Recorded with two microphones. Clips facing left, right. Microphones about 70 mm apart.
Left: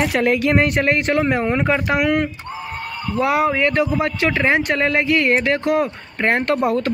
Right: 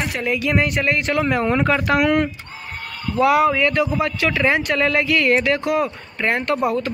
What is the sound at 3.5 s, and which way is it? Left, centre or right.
Speech, left.